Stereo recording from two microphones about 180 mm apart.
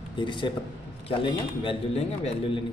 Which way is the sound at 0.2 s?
25° left (ahead or behind).